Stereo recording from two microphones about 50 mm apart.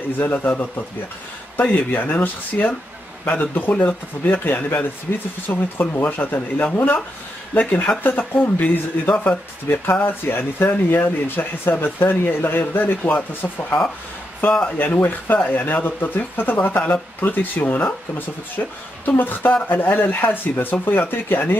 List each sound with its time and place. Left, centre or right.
0.2 s speech: left
14.8 s speech: left